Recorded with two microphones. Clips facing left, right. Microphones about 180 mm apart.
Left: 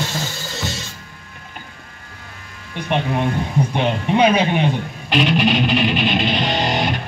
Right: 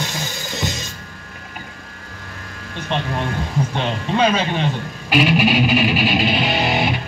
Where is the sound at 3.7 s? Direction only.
15° left (ahead or behind).